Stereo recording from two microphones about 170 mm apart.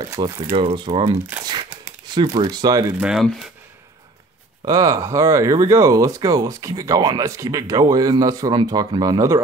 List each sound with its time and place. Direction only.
0.0 s speech: 25° right (ahead or behind)
1.4 s crumpling: 25° right (ahead or behind)
2.3 s speech: 25° right (ahead or behind)
3.0 s speech: centre (ahead or behind)
4.6 s speech: 20° right (ahead or behind)